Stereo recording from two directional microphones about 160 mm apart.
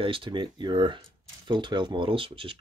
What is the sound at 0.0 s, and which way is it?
Speech, 30° right (ahead or behind).